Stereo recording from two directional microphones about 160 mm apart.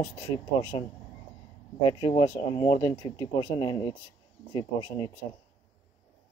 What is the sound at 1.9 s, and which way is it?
Speech, 30° left (ahead or behind).